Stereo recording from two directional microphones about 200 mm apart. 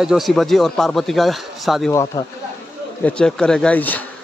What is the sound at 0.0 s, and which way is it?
Speech, centre (ahead or behind).